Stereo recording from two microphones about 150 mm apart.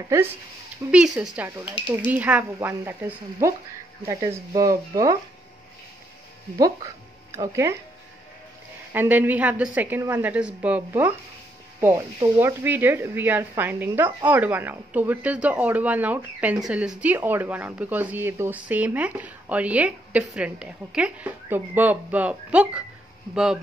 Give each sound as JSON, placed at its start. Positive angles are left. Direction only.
{"t": 0.9, "sound": "speech", "side_deg": -5}
{"t": 7.3, "sound": "speech", "side_deg": -20}
{"t": 8.9, "sound": "speech", "side_deg": -15}
{"t": 12.4, "sound": "speech", "side_deg": -15}